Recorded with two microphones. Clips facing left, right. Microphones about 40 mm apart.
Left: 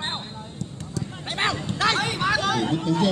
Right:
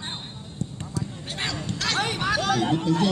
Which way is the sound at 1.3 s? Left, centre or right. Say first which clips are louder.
Left 6 dB; left.